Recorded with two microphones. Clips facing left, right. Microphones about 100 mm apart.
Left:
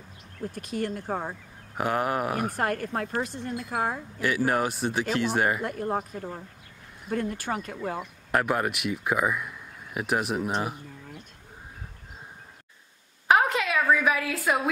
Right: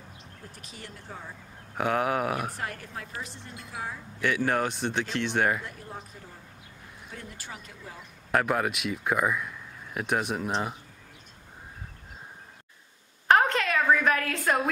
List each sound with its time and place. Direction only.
0.6 s speech: 55° left (ahead or behind)
1.8 s speech: centre (ahead or behind)
2.5 s speech: 55° left (ahead or behind)
4.2 s speech: 5° left (ahead or behind)
5.6 s speech: 60° left (ahead or behind)
8.3 s speech: centre (ahead or behind)
13.3 s a sound: 5° left (ahead or behind)